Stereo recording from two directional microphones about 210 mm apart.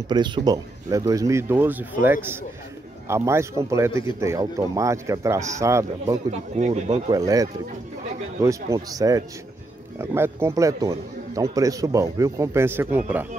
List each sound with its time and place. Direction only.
0.1 s a man's voice: 20° right (ahead or behind)
6.6 s speech: 35° right (ahead or behind)
7.1 s a man's voice: 15° right (ahead or behind)